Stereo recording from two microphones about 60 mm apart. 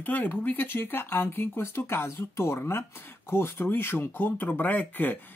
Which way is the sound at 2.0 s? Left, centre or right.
Left.